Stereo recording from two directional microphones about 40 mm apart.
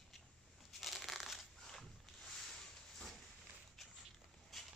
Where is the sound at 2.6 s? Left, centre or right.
Centre.